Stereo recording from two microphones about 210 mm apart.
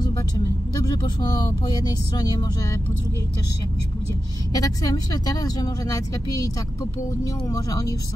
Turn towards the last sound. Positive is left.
turn(degrees=15)  # may be behind; listen again after turning